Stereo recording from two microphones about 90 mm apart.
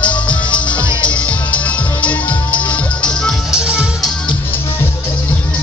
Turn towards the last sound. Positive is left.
turn(degrees=-10)  # may be behind; listen again after turning